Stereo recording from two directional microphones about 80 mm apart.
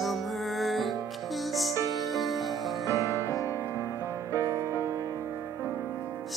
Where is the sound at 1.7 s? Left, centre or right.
Left.